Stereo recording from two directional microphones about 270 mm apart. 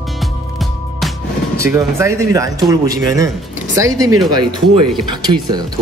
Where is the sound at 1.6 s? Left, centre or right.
Centre.